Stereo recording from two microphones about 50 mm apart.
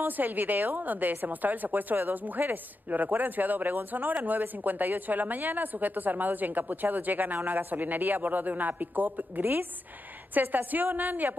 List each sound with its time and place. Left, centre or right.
0.0 s speech: right